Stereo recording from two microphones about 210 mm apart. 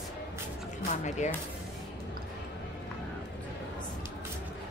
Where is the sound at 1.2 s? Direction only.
35° left (ahead or behind).